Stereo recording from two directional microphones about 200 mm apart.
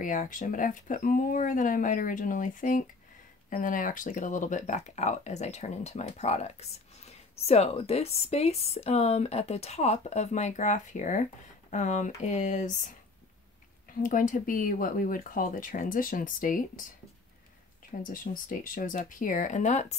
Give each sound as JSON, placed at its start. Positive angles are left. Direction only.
{"t": 0.0, "sound": "speech", "side_deg": 40}
{"t": 14.0, "sound": "speech", "side_deg": 40}
{"t": 18.0, "sound": "speech", "side_deg": 45}